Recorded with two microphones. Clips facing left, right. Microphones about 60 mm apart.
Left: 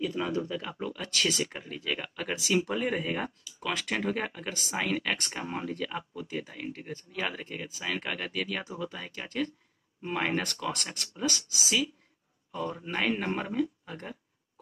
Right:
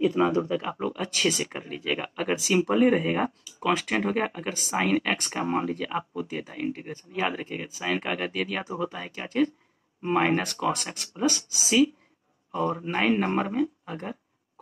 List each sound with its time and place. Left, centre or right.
0.0 s speech: right